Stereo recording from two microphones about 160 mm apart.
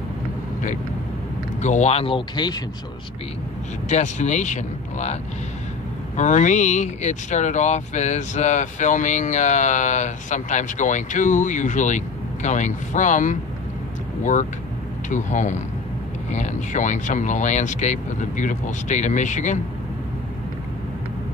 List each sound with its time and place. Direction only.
1.6 s speech: 45° left (ahead or behind); by 2.6 s 25° left (ahead or behind)
3.9 s speech: 45° left (ahead or behind)